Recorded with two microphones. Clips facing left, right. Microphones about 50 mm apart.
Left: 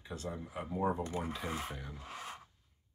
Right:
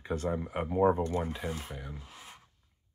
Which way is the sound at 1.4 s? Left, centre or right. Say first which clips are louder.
Right 3 dB; left.